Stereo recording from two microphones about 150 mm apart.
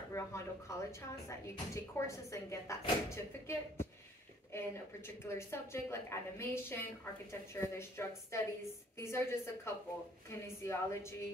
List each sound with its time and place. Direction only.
0.1 s a woman's voice: 20° left (ahead or behind)